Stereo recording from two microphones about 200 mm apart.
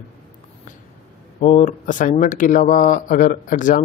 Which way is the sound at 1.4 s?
35° left (ahead or behind).